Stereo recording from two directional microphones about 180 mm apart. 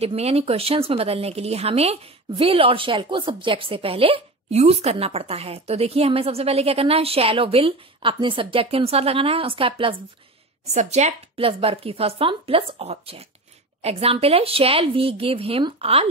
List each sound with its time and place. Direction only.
0.0 s speech: 35° right (ahead or behind)